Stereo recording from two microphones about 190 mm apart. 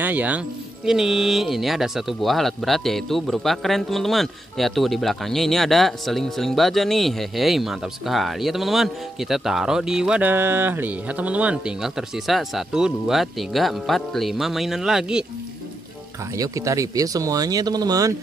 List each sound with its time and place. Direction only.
0.0 s speech: 10° right (ahead or behind)
16.3 s speech: 15° right (ahead or behind)